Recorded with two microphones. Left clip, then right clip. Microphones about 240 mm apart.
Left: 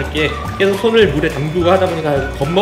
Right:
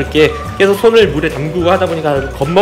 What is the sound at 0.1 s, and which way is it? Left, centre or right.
Speech, right.